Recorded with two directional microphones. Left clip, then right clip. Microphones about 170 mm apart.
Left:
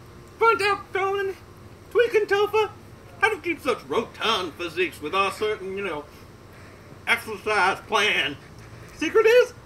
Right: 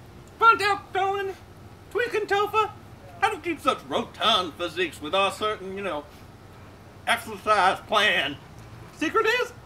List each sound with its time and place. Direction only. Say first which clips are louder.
0.5 s a sound: right 2 dB; 15° right (ahead or behind)
3.2 s a man's voice: left 2 dB; 15° right (ahead or behind)
7.1 s a man's voice: right 1 dB; 15° right (ahead or behind)